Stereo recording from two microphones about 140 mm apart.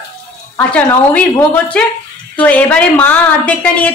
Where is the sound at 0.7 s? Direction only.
10° left (ahead or behind).